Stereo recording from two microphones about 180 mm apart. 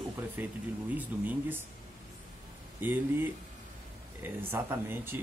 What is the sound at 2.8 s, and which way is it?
Speech, 10° right (ahead or behind).